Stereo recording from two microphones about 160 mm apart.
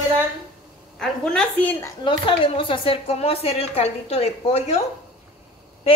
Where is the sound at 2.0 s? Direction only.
30° left (ahead or behind).